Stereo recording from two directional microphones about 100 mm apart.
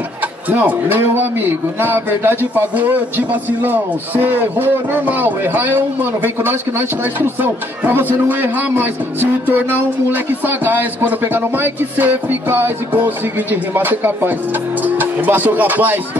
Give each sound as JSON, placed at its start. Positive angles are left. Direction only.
{"t": 0.5, "sound": "a man's voice", "side_deg": -15}